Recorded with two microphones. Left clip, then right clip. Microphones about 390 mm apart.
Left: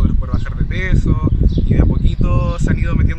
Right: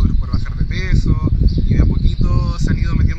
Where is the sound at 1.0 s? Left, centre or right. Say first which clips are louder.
Left 2 dB; left.